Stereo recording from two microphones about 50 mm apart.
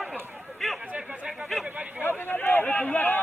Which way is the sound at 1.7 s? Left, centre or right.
Right.